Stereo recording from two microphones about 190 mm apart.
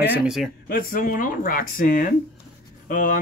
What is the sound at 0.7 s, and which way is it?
Speech, 50° left (ahead or behind).